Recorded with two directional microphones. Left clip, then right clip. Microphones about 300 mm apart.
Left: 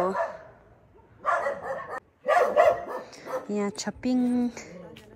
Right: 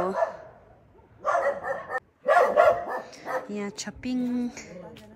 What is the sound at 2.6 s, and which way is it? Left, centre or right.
Dog, centre.